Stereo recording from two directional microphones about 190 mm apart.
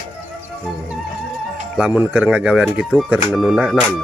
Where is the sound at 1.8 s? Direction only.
5° right (ahead or behind).